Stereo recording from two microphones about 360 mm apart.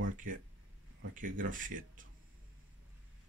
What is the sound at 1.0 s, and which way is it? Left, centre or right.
Speech, right.